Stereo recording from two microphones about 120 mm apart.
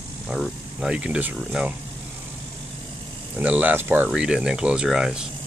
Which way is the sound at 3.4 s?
15° right (ahead or behind).